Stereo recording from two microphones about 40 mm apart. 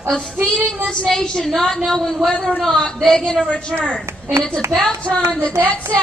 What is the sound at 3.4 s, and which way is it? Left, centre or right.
Speech, left.